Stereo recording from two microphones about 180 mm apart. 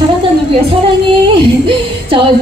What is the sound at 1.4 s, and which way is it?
Speech, 30° right (ahead or behind).